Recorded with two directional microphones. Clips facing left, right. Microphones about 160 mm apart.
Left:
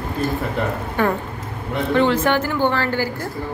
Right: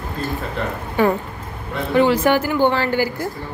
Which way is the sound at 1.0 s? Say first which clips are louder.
Right 4 dB; 10° right (ahead or behind).